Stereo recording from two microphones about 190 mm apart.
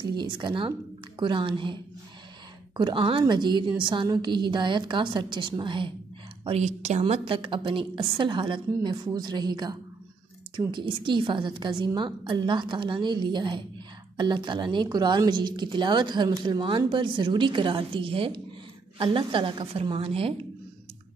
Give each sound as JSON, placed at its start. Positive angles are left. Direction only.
{"t": 0.0, "sound": "speech", "side_deg": -25}
{"t": 2.8, "sound": "speech", "side_deg": -25}